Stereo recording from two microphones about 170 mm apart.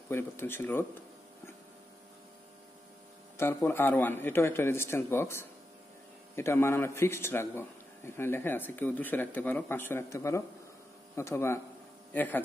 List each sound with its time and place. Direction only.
0.1 s a man's voice: 15° left (ahead or behind)
3.3 s a man's voice: 15° left (ahead or behind)